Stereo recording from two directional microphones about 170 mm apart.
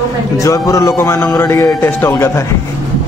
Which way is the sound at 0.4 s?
20° left (ahead or behind).